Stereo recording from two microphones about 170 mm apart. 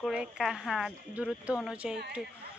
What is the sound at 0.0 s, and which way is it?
Speech, centre (ahead or behind).